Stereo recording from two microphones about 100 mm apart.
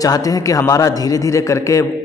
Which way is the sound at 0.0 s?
35° left (ahead or behind).